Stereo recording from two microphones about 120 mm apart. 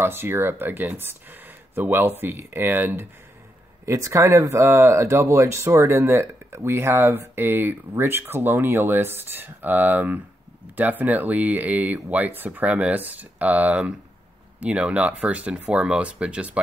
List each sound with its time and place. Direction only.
0.0 s speech: 20° right (ahead or behind)